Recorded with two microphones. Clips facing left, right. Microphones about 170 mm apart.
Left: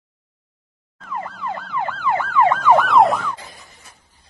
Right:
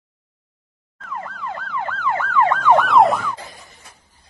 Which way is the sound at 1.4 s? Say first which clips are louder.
Left 2 dB; 15° left (ahead or behind).